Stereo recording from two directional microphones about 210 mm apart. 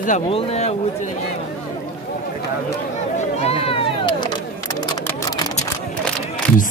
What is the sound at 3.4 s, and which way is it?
Speech, 30° left (ahead or behind).